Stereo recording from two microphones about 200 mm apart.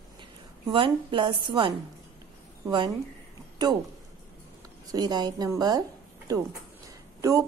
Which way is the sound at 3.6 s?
20° right (ahead or behind).